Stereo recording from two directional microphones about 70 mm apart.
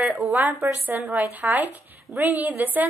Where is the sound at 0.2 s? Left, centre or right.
Right.